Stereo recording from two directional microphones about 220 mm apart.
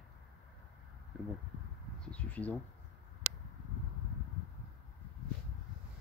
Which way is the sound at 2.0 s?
5° left (ahead or behind).